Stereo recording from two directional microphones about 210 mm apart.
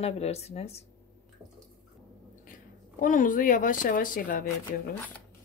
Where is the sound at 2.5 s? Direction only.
40° left (ahead or behind).